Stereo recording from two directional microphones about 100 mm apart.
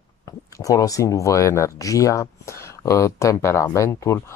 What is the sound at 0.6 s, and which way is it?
Speech, 35° left (ahead or behind).